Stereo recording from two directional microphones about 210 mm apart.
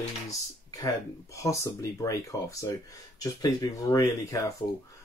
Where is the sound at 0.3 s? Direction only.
15° left (ahead or behind).